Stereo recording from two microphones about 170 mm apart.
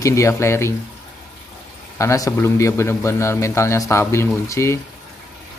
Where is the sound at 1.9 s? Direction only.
20° left (ahead or behind).